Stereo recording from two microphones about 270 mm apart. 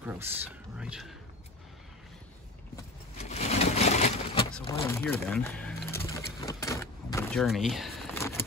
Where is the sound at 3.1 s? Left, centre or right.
Left.